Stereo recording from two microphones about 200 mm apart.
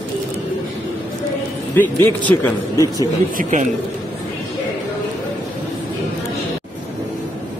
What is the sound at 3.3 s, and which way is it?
Speech, 40° right (ahead or behind).